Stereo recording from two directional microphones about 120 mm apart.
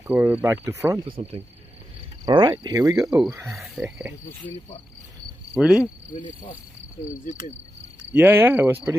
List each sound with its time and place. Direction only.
0.0 s speech: 15° right (ahead or behind)
0.9 s speech: 45° right (ahead or behind)
3.0 s speech: 5° right (ahead or behind)
5.5 s speech: 10° right (ahead or behind)
6.1 s insect: 90° left
8.1 s speech: 15° right (ahead or behind)